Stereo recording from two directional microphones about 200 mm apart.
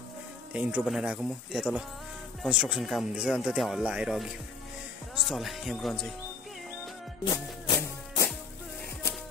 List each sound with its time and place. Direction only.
0.5 s speech: 5° right (ahead or behind)
7.6 s music: 20° left (ahead or behind)